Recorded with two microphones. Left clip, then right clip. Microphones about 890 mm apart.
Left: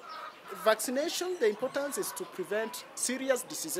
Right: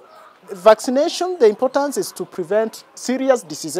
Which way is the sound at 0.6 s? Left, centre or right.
Right.